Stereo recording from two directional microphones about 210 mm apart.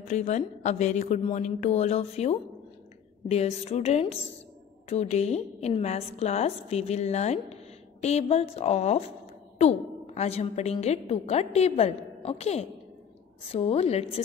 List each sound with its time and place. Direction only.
0.1 s a woman's voice: 35° left (ahead or behind)